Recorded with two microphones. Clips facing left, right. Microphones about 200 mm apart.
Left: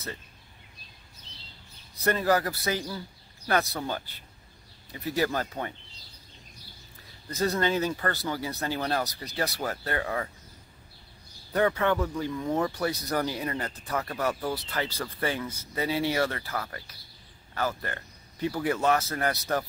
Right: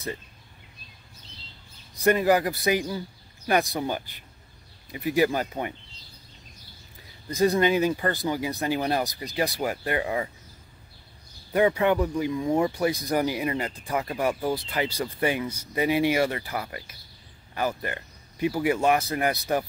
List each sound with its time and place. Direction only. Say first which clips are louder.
2.0 s speech: right 4 dB; 15° right (ahead or behind)
7.2 s speech: right 5 dB; 15° right (ahead or behind)
11.5 s speech: right 3 dB; 15° right (ahead or behind)